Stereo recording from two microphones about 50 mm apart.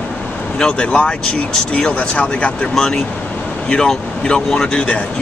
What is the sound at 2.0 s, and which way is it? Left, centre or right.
Speech, left.